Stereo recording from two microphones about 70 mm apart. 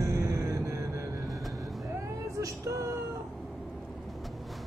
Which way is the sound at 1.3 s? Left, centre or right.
Centre.